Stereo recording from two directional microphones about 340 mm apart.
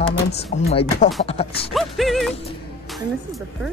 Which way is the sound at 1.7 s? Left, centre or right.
Centre.